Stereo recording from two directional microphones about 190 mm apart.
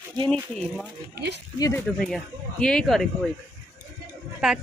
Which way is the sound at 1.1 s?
60° right (ahead or behind).